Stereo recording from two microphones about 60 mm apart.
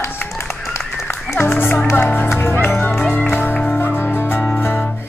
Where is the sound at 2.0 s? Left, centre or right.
Left.